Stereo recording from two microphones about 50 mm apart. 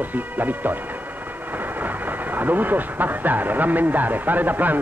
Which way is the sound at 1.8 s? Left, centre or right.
Right.